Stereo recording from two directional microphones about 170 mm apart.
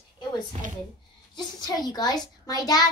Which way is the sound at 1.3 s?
25° left (ahead or behind).